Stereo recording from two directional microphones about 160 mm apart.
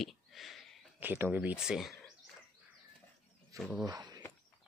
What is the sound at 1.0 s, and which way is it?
Speech, 10° right (ahead or behind).